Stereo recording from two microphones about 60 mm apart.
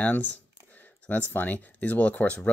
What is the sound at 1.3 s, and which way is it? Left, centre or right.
Speech, left.